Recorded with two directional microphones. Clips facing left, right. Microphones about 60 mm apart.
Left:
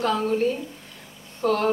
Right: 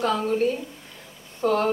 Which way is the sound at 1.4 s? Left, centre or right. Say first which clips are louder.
Even; centre.